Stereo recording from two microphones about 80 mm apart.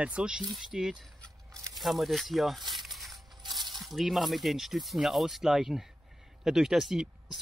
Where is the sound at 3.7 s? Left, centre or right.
Centre.